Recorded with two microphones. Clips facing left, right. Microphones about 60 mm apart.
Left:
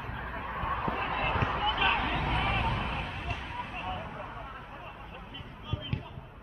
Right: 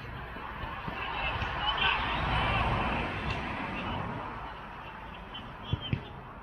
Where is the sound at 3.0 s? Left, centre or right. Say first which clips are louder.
Right 3 dB; right.